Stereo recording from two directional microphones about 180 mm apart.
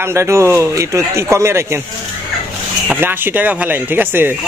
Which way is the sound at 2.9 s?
10° right (ahead or behind).